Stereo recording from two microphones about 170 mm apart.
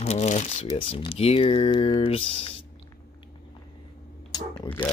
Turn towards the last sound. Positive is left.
turn(degrees=10)  # may be behind; listen again after turning